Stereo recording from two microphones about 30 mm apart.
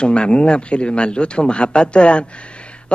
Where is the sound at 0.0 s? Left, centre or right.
Left.